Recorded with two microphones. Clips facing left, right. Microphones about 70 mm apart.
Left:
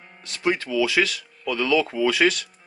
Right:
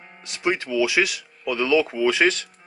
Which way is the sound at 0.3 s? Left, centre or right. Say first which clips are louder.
Even; centre.